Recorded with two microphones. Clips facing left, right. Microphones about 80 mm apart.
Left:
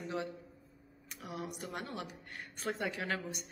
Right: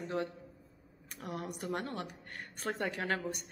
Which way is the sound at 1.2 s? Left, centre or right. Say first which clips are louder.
Right 3 dB; right.